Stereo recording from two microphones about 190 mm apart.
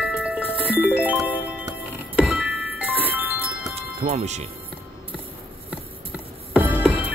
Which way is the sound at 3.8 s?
30° right (ahead or behind).